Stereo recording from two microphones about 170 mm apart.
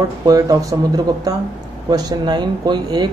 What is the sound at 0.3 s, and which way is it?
Speech, 20° right (ahead or behind).